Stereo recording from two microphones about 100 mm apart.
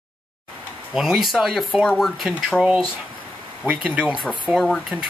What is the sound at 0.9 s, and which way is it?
Speech, 5° right (ahead or behind).